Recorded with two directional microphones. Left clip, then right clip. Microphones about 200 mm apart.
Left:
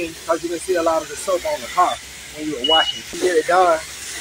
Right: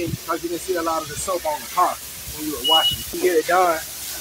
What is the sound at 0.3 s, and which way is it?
Speech, centre (ahead or behind).